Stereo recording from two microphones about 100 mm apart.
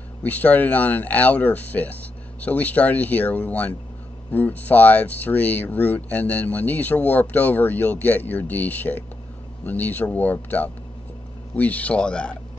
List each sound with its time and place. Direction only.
0.2 s speech: 15° left (ahead or behind)